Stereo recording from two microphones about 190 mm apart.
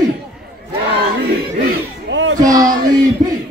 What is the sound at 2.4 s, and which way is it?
Speech, 20° right (ahead or behind).